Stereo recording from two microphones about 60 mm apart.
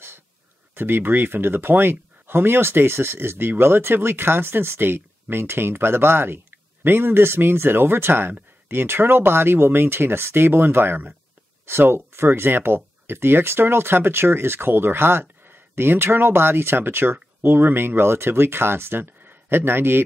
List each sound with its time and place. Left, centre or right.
0.7 s speech: right